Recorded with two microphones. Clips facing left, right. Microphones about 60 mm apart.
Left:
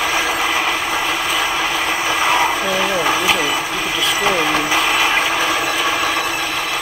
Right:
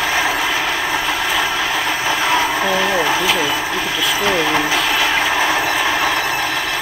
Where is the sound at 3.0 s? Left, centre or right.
Left.